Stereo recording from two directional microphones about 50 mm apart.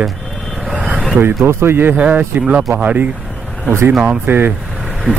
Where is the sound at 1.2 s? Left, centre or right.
Right.